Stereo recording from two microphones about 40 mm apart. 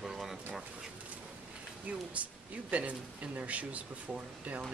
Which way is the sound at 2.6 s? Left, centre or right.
Right.